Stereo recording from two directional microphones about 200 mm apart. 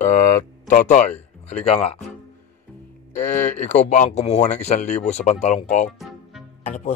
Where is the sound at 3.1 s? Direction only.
35° left (ahead or behind).